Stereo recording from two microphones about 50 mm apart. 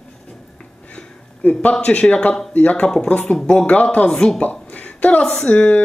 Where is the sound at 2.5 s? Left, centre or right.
Left.